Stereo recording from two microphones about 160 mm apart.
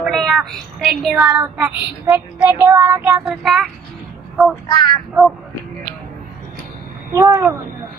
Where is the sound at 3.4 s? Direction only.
Centre (ahead or behind).